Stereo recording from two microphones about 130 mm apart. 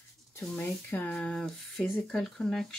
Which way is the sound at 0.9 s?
15° left (ahead or behind).